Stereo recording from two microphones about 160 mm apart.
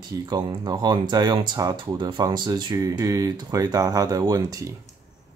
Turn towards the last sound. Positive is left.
turn(degrees=-20)  # may be behind; listen again after turning